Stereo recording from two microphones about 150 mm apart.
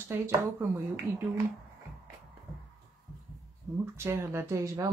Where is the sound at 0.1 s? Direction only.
20° right (ahead or behind).